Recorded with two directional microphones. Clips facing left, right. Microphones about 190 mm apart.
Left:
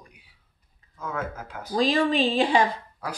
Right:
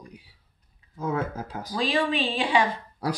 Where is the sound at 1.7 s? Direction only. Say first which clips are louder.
Left 4 dB; 40° left (ahead or behind).